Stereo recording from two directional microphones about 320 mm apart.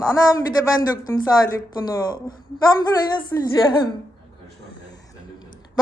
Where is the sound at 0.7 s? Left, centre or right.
Centre.